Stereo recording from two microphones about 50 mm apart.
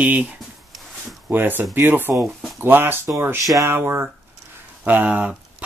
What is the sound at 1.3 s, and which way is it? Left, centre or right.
Speech, right.